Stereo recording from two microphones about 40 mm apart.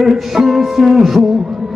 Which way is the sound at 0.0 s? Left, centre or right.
Centre.